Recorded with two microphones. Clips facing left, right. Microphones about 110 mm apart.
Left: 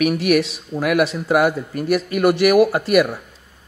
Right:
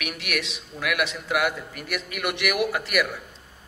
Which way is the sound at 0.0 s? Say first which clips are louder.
Left 14 dB; 40° left (ahead or behind).